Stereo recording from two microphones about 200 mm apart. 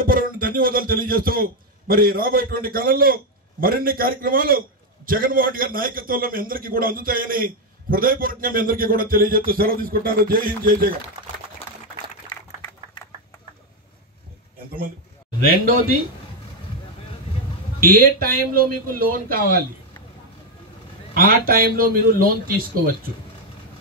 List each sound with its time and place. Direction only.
0.0 s a man's voice: 45° right (ahead or behind)
12.3 s a sound: 25° left (ahead or behind)
17.7 s a man's voice: 45° right (ahead or behind)
21.1 s a man's voice: 45° right (ahead or behind)